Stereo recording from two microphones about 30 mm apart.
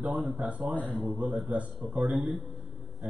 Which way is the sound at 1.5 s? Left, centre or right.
Right.